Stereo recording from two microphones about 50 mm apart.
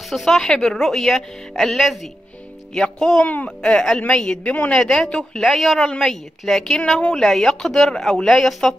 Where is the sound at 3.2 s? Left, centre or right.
Left.